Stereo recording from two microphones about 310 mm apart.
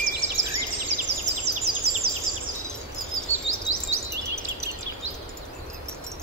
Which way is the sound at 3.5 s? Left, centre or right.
Right.